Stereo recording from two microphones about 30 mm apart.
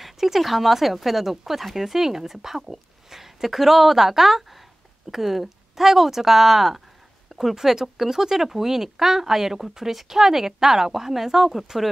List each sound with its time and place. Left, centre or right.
0.0 s speech: centre
7.2 s a sound: centre
7.5 s speech: centre